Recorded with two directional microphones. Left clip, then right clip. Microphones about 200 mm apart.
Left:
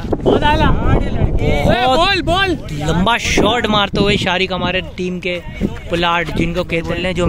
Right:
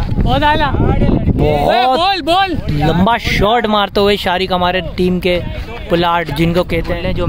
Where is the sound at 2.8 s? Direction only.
15° right (ahead or behind).